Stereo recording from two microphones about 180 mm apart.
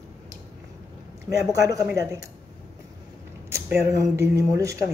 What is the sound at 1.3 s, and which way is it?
Speech, 15° right (ahead or behind).